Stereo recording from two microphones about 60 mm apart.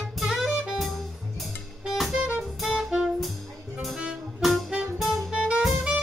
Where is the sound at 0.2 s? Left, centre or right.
Centre.